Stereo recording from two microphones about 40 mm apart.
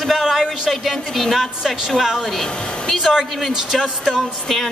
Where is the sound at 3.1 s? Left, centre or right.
Centre.